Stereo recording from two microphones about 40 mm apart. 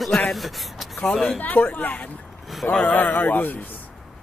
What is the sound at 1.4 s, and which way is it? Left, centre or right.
A man's voice, left.